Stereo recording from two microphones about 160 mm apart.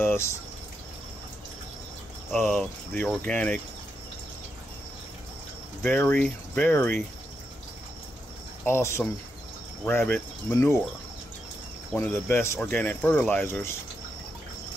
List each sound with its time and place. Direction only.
0.0 s a sound: 15° left (ahead or behind)
2.3 s speech: centre (ahead or behind)
5.8 s speech: 10° left (ahead or behind)
8.6 s speech: 15° left (ahead or behind)
11.9 s speech: 15° left (ahead or behind)